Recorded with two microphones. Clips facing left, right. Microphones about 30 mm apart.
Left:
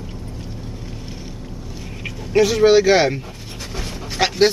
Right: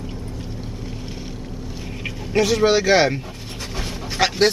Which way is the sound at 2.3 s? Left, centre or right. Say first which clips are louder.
Left 4 dB; centre.